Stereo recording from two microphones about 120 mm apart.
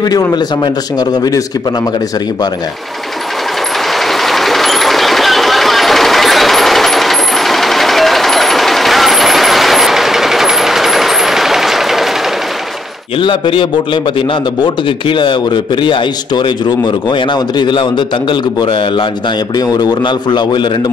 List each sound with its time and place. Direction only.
0.0 s a man's voice: 30° left (ahead or behind)
3.9 s vehicle: centre (ahead or behind)
13.2 s a man's voice: 40° left (ahead or behind)